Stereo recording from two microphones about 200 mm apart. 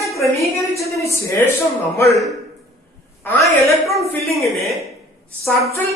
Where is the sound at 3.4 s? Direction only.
Centre (ahead or behind).